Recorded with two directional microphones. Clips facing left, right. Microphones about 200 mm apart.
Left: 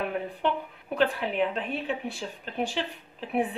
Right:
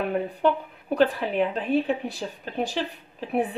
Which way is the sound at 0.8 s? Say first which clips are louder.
Right 4 dB; 35° right (ahead or behind).